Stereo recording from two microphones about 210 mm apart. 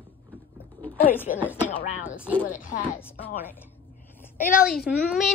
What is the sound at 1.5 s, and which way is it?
Speech, 10° left (ahead or behind).